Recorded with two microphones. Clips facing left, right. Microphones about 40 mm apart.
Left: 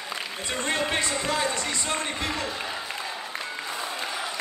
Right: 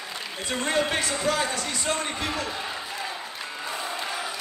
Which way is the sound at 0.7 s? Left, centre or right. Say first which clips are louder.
Right 2 dB; centre.